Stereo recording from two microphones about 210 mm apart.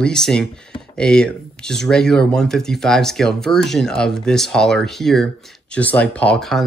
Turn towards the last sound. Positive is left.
turn(degrees=5)  # may be behind; listen again after turning